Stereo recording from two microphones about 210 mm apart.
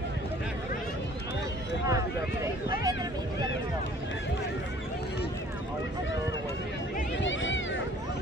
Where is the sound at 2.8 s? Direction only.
20° right (ahead or behind).